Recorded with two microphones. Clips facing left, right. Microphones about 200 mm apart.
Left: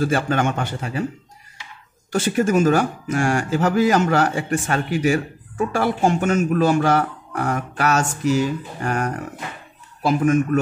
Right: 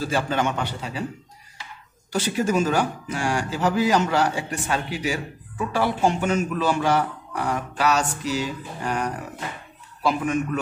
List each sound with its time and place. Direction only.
0.0 s speech: 50° left (ahead or behind)
2.1 s speech: 50° left (ahead or behind)